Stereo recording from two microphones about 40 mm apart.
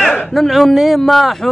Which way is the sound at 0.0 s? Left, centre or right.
Centre.